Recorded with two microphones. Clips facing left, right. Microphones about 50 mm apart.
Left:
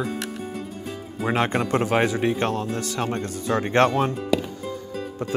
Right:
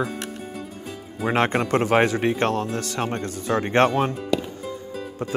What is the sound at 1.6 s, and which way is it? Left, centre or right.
Speech, right.